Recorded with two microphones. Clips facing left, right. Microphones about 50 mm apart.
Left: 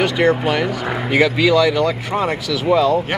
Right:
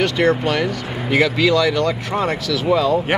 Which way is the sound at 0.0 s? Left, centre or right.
Centre.